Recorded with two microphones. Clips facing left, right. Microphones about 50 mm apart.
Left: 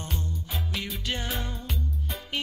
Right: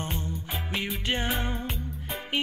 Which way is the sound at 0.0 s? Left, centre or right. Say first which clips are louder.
Right 2 dB; right.